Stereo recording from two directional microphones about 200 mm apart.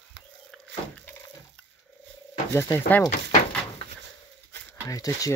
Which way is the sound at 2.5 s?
15° left (ahead or behind).